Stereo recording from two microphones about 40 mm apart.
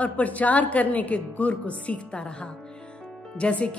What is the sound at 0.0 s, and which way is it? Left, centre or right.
A woman's voice, left.